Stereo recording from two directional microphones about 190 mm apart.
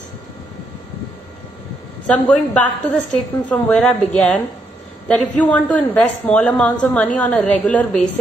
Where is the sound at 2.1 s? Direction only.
10° left (ahead or behind).